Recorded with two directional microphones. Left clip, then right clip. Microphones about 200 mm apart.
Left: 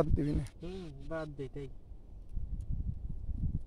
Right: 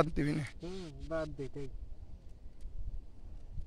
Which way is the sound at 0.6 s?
30° left (ahead or behind).